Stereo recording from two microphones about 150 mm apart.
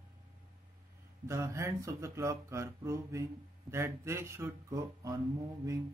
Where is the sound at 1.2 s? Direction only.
20° right (ahead or behind).